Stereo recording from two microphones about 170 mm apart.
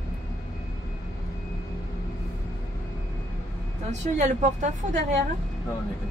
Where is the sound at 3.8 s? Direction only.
45° right (ahead or behind).